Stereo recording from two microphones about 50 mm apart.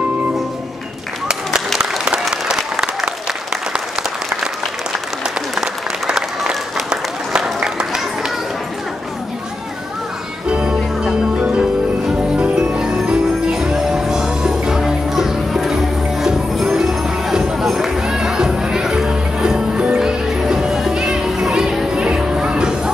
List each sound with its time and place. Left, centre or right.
1.8 s applause: centre
5.6 s applause: centre
7.6 s a sound: centre
10.5 s music: centre
12.4 s music: right
12.6 s jingle bell: centre
13.7 s music: centre